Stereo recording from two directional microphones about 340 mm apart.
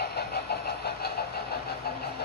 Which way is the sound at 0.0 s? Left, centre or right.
Left.